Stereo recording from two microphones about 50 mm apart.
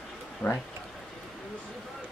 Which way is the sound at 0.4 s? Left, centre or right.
Left.